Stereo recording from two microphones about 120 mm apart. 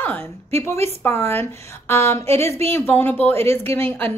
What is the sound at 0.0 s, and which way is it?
Speech, 15° left (ahead or behind).